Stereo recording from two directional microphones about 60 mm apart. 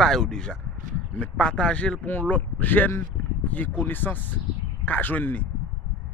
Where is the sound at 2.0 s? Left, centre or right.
Left.